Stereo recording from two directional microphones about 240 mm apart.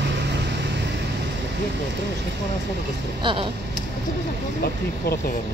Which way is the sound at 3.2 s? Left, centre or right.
Centre.